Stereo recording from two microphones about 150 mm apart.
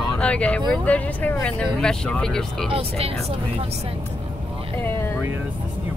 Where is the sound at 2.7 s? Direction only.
40° right (ahead or behind).